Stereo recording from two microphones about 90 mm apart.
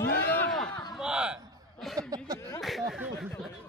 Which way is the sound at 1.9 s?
45° right (ahead or behind).